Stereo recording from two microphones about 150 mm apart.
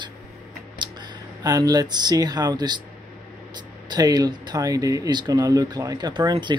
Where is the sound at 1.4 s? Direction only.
25° right (ahead or behind).